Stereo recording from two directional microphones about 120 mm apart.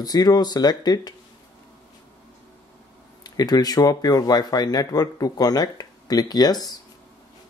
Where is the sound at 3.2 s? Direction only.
35° left (ahead or behind).